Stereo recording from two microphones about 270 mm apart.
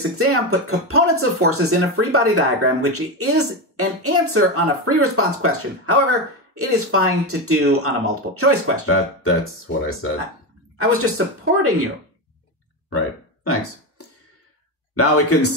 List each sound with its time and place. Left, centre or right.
0.2 s speech: right
8.8 s speech: left
10.8 s speech: right
12.9 s a sound: left
15.0 s a man's voice: left